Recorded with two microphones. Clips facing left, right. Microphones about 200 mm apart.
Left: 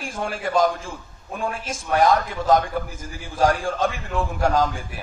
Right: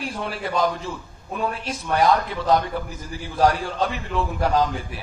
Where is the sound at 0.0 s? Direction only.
45° left (ahead or behind).